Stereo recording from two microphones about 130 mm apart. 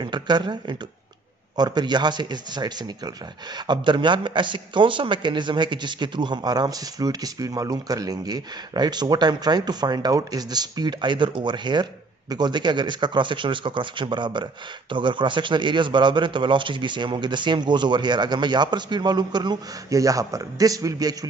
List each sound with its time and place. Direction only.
0.0 s a man's voice: 35° right (ahead or behind)